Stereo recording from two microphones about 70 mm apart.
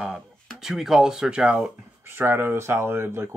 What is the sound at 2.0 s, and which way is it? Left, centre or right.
Speech, right.